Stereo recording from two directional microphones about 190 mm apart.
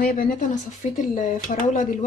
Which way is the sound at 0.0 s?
50° left (ahead or behind).